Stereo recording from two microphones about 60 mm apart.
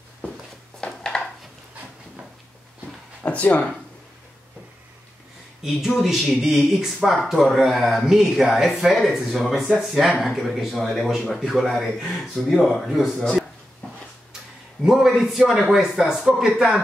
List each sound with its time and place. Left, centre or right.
0.7 s a sound: centre
3.3 s speech: left
5.7 s a man's voice: centre
14.8 s a man's voice: centre